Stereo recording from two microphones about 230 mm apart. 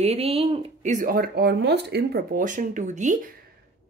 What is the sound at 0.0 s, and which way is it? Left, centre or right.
Speech, right.